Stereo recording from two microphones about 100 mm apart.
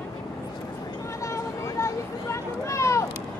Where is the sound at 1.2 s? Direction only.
30° left (ahead or behind).